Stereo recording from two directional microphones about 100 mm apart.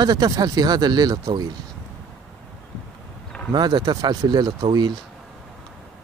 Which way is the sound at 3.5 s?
45° right (ahead or behind).